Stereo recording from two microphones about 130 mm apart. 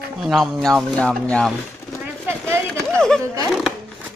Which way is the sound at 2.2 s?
20° right (ahead or behind).